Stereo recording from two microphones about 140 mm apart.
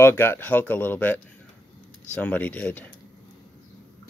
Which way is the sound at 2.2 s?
10° left (ahead or behind).